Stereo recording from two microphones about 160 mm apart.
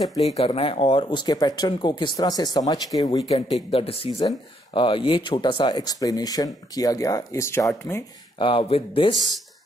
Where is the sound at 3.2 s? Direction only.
40° left (ahead or behind); by 7.7 s 20° left (ahead or behind).